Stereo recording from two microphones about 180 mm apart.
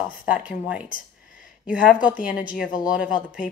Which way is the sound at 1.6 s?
5° right (ahead or behind).